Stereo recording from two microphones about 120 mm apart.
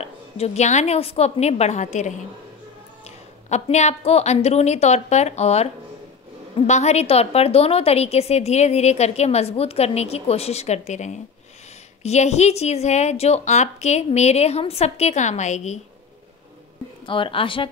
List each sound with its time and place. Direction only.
0.0 s a woman's voice: 65° left (ahead or behind)
3.4 s a woman's voice: 70° left (ahead or behind)
6.7 s a woman's voice: 65° left (ahead or behind)
17.0 s a woman's voice: 45° left (ahead or behind)